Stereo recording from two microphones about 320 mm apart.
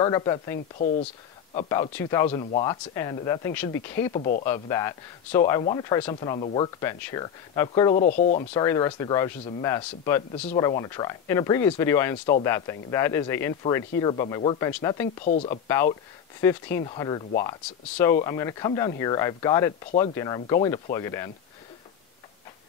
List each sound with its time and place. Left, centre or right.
0.0 s speech: centre
4.2 s speech: left
4.5 s speech: centre
7.9 s speech: left